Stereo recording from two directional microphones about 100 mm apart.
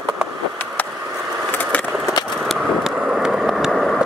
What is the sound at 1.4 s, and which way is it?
Vehicle, 15° left (ahead or behind).